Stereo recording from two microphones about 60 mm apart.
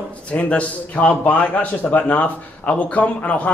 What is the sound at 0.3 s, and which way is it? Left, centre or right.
A man's voice, left.